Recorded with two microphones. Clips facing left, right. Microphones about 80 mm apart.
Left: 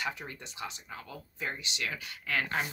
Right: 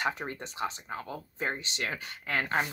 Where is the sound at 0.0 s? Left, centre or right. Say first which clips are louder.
Right 5 dB; right.